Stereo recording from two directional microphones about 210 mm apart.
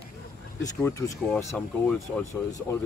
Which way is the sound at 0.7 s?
10° left (ahead or behind).